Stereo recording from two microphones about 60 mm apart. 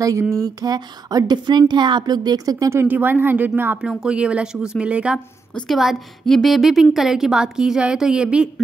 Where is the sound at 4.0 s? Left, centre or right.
Centre.